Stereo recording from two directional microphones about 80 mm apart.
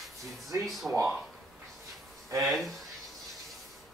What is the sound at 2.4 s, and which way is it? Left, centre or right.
Speech, centre.